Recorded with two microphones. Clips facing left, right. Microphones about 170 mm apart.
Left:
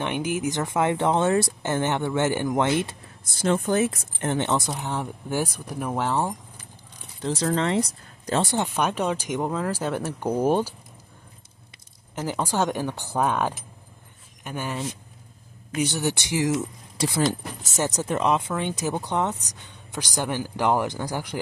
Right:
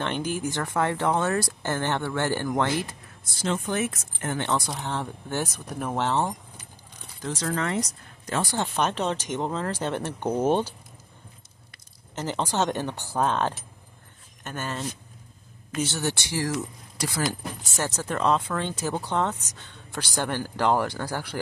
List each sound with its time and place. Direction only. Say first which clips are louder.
0.0 s speech: left 2 dB; 15° left (ahead or behind)
3.3 s speech: left 5 dB; 55° left (ahead or behind)
3.7 s speech: left 5 dB; 30° left (ahead or behind)
4.6 s speech: left 2 dB; 10° left (ahead or behind)
7.2 s speech: left 4 dB; 30° left (ahead or behind)
8.5 s speech: left 2 dB; 10° left (ahead or behind)
12.2 s speech: left 1 dB; 10° left (ahead or behind)